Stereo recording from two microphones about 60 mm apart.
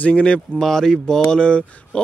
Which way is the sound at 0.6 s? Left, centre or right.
Centre.